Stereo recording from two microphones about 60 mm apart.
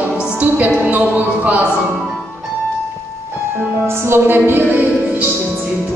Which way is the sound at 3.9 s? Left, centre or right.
Right.